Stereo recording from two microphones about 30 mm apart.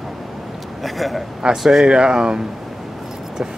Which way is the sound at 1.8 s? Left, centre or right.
Right.